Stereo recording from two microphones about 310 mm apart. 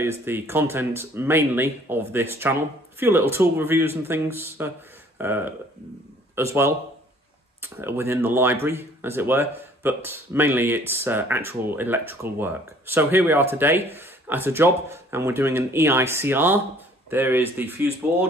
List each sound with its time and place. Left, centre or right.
0.0 s speech: centre